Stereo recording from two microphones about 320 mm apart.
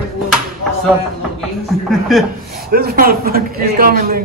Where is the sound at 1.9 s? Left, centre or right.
Centre.